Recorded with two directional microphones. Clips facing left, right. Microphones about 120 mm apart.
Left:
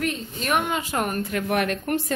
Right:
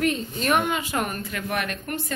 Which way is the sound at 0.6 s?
35° left (ahead or behind).